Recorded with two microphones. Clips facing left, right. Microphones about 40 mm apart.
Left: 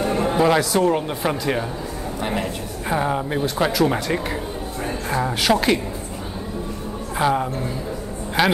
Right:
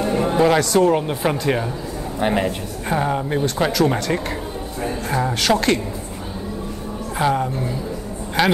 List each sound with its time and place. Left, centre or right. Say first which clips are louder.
0.0 s speech: right 1 dB; centre
2.1 s speech: right 6 dB; centre
2.9 s a woman's voice: right 1 dB; centre
7.2 s speech: even; centre